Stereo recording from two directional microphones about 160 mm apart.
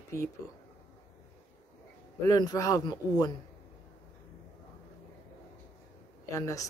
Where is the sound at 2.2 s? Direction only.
25° left (ahead or behind).